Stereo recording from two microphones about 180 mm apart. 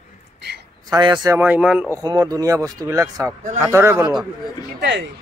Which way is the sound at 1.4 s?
5° right (ahead or behind).